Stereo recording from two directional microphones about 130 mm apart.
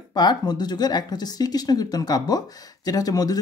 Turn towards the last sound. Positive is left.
turn(degrees=30)  # may be behind; listen again after turning